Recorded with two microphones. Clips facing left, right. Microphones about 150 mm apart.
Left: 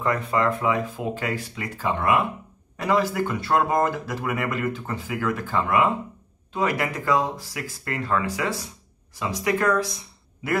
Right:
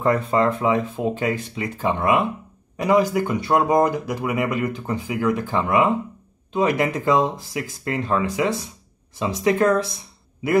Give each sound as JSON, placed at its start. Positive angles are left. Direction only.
{"t": 0.0, "sound": "speech", "side_deg": -30}